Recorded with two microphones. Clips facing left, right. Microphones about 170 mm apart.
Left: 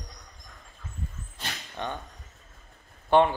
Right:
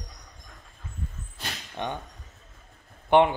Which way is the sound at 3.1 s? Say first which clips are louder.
Right 1 dB; 15° right (ahead or behind).